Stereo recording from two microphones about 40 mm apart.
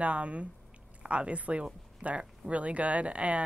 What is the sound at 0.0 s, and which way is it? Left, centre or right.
A woman's voice, right.